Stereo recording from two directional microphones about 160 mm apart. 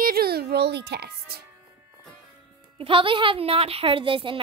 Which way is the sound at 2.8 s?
35° right (ahead or behind).